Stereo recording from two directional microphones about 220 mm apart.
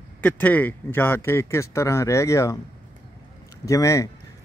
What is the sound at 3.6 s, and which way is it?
Speech, 15° left (ahead or behind).